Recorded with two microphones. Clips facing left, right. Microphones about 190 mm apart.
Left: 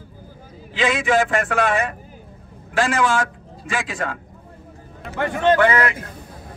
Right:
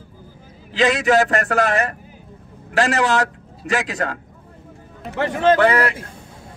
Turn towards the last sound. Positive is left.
turn(degrees=-35)  # may be behind; listen again after turning